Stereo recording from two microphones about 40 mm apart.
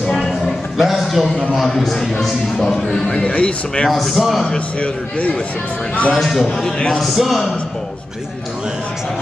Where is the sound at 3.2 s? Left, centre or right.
Left.